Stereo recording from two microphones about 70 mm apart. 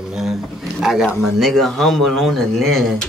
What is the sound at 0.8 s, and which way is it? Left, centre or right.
A man's voice, centre.